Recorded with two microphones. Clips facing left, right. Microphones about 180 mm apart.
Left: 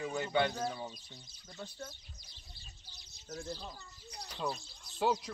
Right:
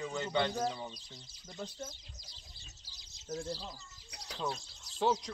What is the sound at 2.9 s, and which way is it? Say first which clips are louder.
Bird: left 3 dB; 90° right.